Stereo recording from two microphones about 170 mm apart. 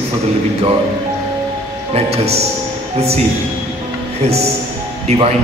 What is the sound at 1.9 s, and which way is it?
A man's voice, 40° right (ahead or behind).